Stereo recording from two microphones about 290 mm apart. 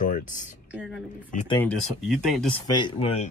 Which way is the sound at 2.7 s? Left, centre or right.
Centre.